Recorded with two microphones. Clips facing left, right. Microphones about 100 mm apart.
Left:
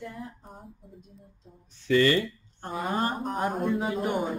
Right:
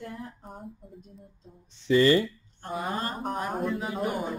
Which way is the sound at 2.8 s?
35° left (ahead or behind).